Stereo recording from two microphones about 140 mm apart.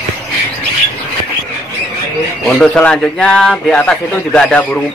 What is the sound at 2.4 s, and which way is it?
Speech, 5° left (ahead or behind).